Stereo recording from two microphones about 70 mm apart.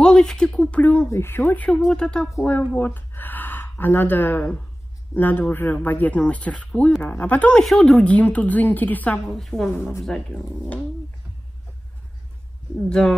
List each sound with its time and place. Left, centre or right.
0.0 s a sound: centre
0.7 s speech: left
1.0 s speech: left
1.9 s speech: centre
2.7 s speech: left; by 8.0 s centre
8.0 s speech: centre
9.3 s a woman's voice: centre
13.0 s speech: centre